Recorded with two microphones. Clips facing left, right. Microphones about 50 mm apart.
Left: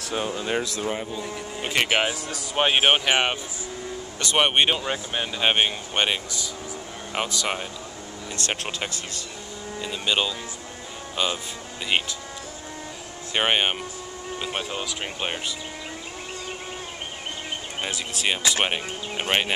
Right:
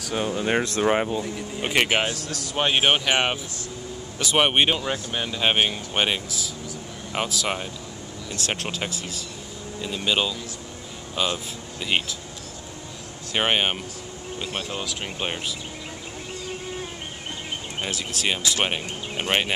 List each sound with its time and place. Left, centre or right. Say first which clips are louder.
0.1 s speech: right 2 dB; centre
0.4 s speech: right 6 dB; right
0.7 s speech: right 7 dB; right
1.6 s speech: right 2 dB; centre
1.9 s speech: even; centre
13.3 s speech: even; centre
17.8 s speech: even; centre